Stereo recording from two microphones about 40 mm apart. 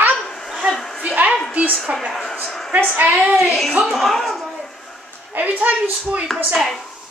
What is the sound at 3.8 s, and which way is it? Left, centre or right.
Speech, centre.